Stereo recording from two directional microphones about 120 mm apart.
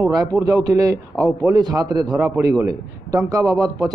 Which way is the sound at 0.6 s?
30° right (ahead or behind).